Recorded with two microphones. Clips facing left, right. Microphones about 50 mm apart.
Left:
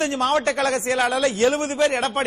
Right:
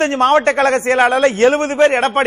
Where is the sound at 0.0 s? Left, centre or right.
Right.